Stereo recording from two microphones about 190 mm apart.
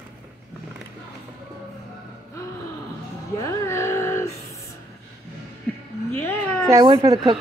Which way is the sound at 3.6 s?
15° left (ahead or behind).